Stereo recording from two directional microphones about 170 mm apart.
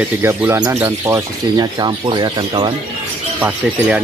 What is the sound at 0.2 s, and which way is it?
Speech, 15° right (ahead or behind).